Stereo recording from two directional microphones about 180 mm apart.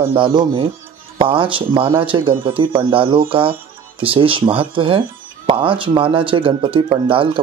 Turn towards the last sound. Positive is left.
turn(degrees=-30)  # may be behind; listen again after turning